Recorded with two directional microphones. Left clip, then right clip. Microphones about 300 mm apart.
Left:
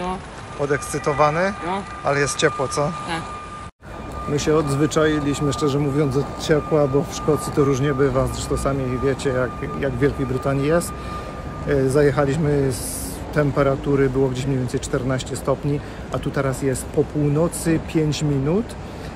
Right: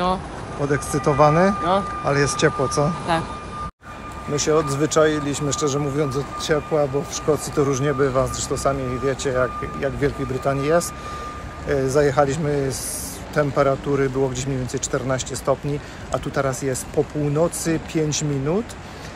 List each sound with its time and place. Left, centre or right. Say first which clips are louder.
0.7 s speech: right 3 dB; centre
4.4 s speech: even; centre